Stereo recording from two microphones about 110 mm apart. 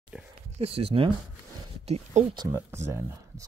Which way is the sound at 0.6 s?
65° right (ahead or behind).